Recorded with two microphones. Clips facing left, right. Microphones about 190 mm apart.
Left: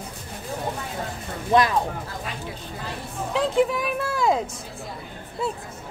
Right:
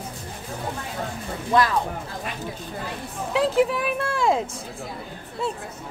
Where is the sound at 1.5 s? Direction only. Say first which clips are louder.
Left 1 dB; 20° left (ahead or behind).